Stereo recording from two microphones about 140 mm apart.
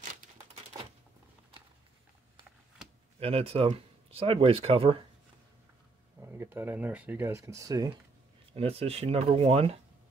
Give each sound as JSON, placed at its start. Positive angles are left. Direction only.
{"t": 3.2, "sound": "speech", "side_deg": -45}
{"t": 6.2, "sound": "speech", "side_deg": -15}
{"t": 8.5, "sound": "speech", "side_deg": -45}